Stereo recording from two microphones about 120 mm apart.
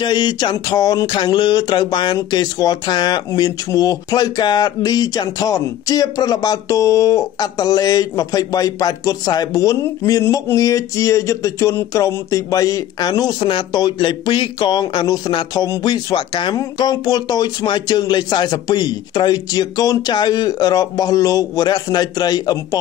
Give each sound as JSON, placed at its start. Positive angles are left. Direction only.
{"t": 0.0, "sound": "speech", "side_deg": 35}